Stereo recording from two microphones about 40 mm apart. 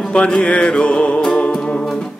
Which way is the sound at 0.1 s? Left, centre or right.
Left.